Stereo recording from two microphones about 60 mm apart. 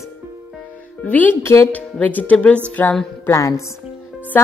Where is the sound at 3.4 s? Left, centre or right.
Left.